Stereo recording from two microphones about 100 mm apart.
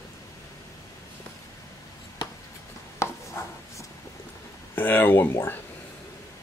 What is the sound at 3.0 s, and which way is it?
Chopping, 30° left (ahead or behind).